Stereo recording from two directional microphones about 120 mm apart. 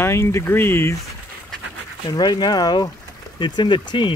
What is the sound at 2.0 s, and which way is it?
Speech, 35° left (ahead or behind).